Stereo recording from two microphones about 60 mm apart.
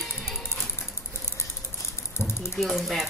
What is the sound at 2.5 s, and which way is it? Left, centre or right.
Speech, centre.